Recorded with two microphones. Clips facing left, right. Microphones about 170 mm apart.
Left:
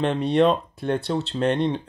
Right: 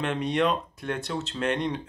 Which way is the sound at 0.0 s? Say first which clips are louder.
Left 6 dB; 35° left (ahead or behind).